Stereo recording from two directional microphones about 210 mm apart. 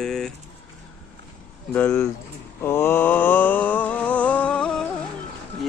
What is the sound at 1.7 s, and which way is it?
Speech, 10° left (ahead or behind).